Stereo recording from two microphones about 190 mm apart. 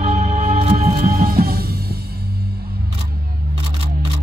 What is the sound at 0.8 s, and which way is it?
Music, 50° right (ahead or behind).